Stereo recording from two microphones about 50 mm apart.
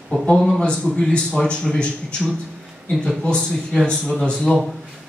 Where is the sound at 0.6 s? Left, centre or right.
Centre.